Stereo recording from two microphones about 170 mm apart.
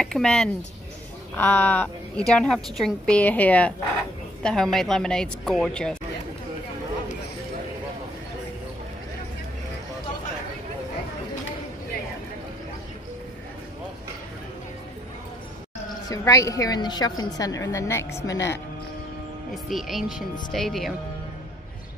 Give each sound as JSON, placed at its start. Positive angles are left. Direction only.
{"t": 0.0, "sound": "a woman's voice", "side_deg": 5}
{"t": 16.1, "sound": "a woman's voice", "side_deg": 20}
{"t": 19.5, "sound": "a woman's voice", "side_deg": 0}